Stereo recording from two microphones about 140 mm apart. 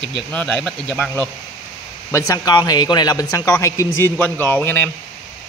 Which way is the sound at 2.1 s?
25° left (ahead or behind).